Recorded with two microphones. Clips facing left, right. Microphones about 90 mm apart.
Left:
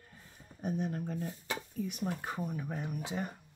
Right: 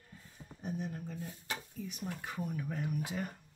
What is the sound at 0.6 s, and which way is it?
Speech, 60° left (ahead or behind).